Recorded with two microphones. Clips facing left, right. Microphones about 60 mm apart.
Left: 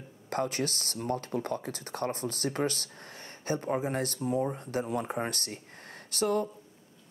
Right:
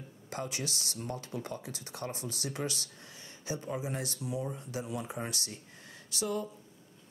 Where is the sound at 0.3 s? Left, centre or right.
Left.